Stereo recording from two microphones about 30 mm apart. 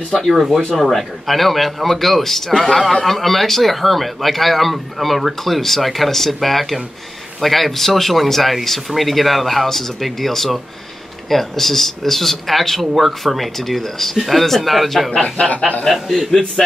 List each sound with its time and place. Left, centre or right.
0.2 s a man's voice: centre
15.4 s a sound: left
15.9 s speech: centre
16.3 s a man's voice: centre